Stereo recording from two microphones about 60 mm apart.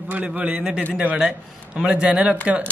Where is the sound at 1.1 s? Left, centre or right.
Centre.